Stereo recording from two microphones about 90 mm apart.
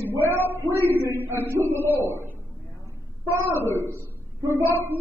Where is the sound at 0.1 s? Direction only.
30° right (ahead or behind).